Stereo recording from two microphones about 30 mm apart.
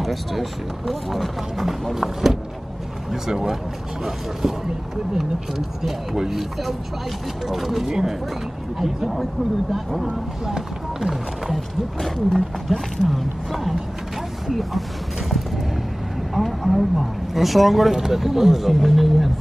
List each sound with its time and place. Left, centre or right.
0.0 s speech: centre
5.8 s speech: centre
7.4 s speech: centre
10.4 s speech: centre
12.0 s speech: centre
13.1 s speech: centre
15.2 s a sound: centre
16.3 s speech: centre
17.9 s speech: centre